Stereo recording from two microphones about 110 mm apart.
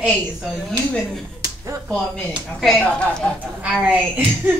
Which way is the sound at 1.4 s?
30° right (ahead or behind).